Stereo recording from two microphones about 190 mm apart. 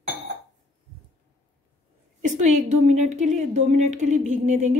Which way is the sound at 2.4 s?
35° right (ahead or behind).